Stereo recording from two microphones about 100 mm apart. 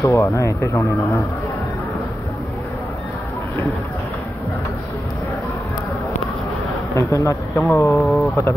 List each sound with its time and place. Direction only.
0.0 s speech: 30° left (ahead or behind)
7.0 s speech: 30° left (ahead or behind)
7.9 s speech: centre (ahead or behind)